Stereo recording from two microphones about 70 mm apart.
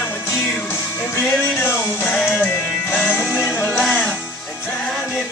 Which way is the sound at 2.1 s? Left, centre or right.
Centre.